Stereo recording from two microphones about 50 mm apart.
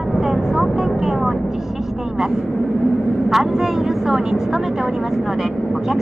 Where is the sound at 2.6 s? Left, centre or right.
Centre.